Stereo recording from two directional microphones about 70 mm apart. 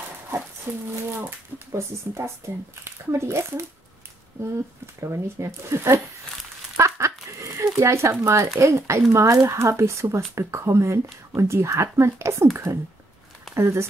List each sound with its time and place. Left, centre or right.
0.7 s speech: right
1.7 s speech: right
5.0 s speech: right
6.8 s crumpling: right
8.5 s speech: right
12.7 s speech: right
13.6 s speech: right